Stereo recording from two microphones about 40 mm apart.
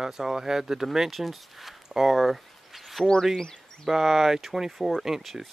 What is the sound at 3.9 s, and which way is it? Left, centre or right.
Speech, centre.